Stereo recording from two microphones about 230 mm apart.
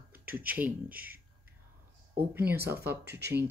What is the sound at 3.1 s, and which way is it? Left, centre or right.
Speech, right.